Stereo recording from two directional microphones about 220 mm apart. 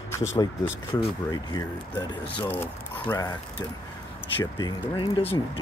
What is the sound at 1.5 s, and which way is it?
Speech, 15° left (ahead or behind).